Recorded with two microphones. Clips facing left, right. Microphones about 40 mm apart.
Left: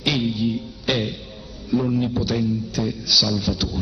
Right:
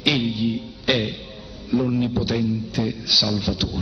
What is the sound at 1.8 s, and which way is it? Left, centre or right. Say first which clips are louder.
Speech: even; centre.